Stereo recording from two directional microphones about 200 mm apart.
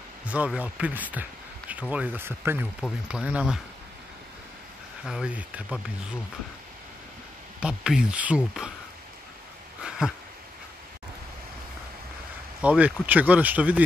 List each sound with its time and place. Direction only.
0.2 s speech: 5° right (ahead or behind)
5.0 s speech: 5° right (ahead or behind)
7.6 s speech: 5° right (ahead or behind)
9.8 s a sound: 5° right (ahead or behind)
12.6 s speech: 5° right (ahead or behind)